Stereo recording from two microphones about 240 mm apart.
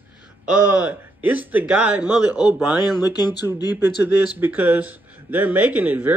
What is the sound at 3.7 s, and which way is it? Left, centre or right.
Speech, centre.